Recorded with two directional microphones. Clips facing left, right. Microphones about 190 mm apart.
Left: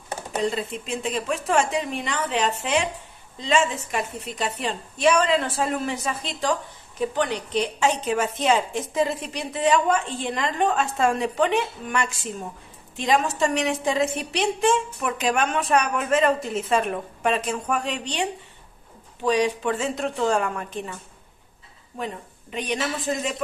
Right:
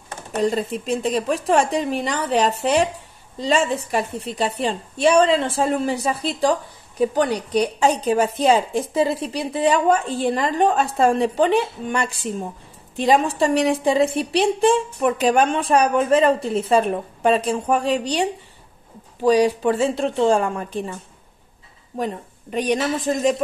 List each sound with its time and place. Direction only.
0.4 s a woman's voice: 45° right (ahead or behind)
21.9 s a woman's voice: 40° right (ahead or behind)